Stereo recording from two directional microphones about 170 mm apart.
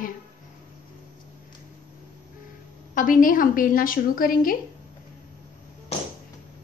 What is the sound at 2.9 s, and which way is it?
A woman's voice, 55° left (ahead or behind).